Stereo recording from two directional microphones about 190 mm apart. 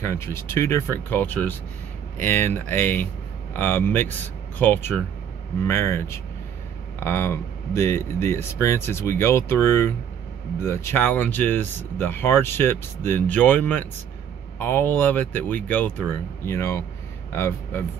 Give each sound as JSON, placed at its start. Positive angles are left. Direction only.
{"t": 0.0, "sound": "speech", "side_deg": 15}